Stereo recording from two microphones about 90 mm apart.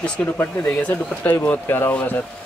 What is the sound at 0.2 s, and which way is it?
Speech, 10° left (ahead or behind).